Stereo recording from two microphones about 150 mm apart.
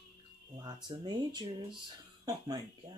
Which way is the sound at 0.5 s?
30° right (ahead or behind).